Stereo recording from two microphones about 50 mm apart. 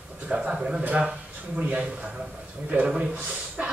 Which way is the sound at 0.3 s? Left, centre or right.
Right.